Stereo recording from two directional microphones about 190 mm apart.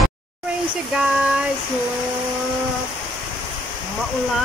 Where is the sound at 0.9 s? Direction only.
5° right (ahead or behind).